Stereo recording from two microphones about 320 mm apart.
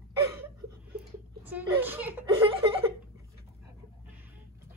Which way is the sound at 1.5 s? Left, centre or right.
Centre.